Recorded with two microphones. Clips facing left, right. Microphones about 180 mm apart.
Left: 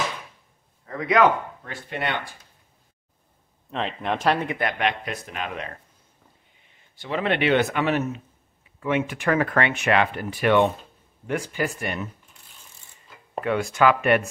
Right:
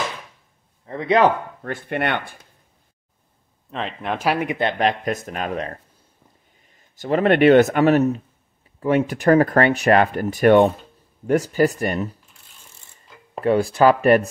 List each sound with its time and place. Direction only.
0.8 s a sound: 30° right (ahead or behind)
1.6 s speech: 55° right (ahead or behind)
3.7 s speech: centre (ahead or behind)
4.6 s speech: 30° right (ahead or behind)
13.4 s speech: 35° right (ahead or behind)